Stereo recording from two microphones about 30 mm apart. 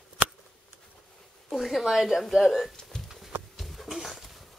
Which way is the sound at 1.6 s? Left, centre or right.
Centre.